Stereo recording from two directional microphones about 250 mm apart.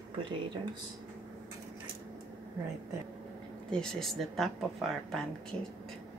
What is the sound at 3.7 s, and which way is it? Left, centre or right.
Speech, centre.